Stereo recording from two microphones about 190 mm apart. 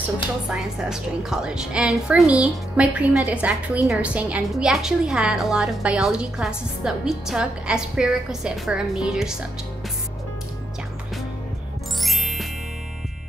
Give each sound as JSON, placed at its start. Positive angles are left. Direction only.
{"t": 0.5, "sound": "a woman's voice", "side_deg": -5}
{"t": 12.0, "sound": "music", "side_deg": 0}